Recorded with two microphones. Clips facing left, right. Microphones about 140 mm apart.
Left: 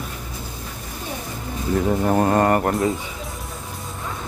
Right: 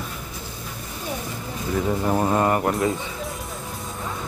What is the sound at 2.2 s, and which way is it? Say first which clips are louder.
Speech: left 2 dB; 50° left (ahead or behind).